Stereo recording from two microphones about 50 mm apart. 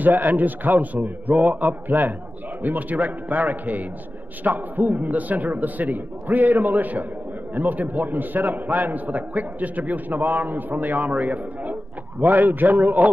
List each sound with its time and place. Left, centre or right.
0.0 s a man's voice: right